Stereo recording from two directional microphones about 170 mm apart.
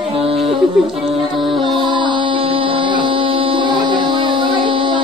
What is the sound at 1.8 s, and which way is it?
Mantra, 25° right (ahead or behind).